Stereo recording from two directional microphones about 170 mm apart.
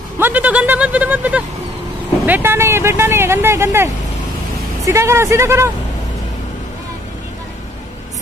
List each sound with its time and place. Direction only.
0.2 s speech: 10° right (ahead or behind)
2.2 s vehicle: 10° right (ahead or behind)
4.8 s speech: 15° right (ahead or behind)